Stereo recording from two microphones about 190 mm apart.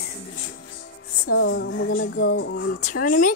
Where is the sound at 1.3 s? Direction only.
65° left (ahead or behind); by 2.6 s 80° left.